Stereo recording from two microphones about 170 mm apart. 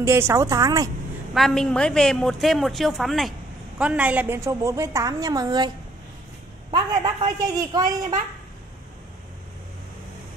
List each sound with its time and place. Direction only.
0.0 s a woman's voice: 15° right (ahead or behind)
1.3 s a woman's voice: centre (ahead or behind); by 5.7 s 25° right (ahead or behind)
6.7 s a woman's voice: 30° right (ahead or behind)